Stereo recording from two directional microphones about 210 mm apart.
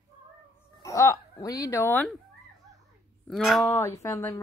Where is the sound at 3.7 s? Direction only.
15° left (ahead or behind).